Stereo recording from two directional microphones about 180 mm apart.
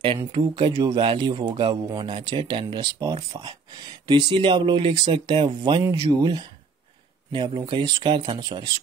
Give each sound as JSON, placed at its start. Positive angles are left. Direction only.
{"t": 0.3, "sound": "speech", "side_deg": -25}